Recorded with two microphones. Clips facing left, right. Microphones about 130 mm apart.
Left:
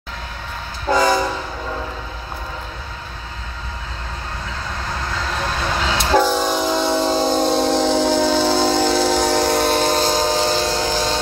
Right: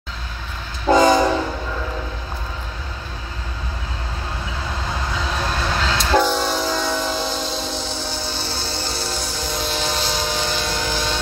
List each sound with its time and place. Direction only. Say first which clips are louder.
0.8 s train: right 3 dB; 20° right (ahead or behind)
5.1 s train: left 1 dB; 5° right (ahead or behind)
5.9 s train: left 2 dB; 20° left (ahead or behind)
6.1 s train: left 2 dB; 10° left (ahead or behind); by 11.1 s 35° left (ahead or behind)